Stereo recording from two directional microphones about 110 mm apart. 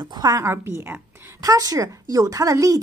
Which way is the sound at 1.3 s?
35° right (ahead or behind).